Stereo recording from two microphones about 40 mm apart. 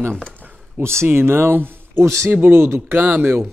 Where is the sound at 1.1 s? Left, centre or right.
Right.